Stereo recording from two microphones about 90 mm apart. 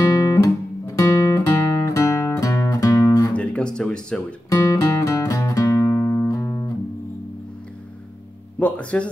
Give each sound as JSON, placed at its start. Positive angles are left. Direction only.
{"t": 0.1, "sound": "guitar", "side_deg": 40}
{"t": 3.3, "sound": "a sound", "side_deg": 10}
{"t": 4.5, "sound": "music", "side_deg": 35}
{"t": 8.5, "sound": "speech", "side_deg": 15}